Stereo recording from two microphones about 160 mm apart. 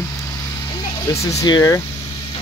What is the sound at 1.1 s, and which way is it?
Speech, 20° left (ahead or behind).